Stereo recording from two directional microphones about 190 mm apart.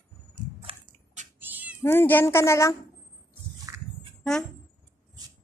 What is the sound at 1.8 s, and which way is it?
Speech, 10° left (ahead or behind).